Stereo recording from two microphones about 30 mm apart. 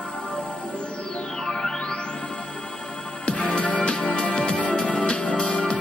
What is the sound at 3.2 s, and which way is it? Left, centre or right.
Music, left.